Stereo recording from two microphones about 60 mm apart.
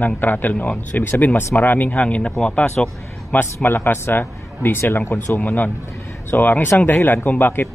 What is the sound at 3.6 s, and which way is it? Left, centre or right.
A man's voice, left.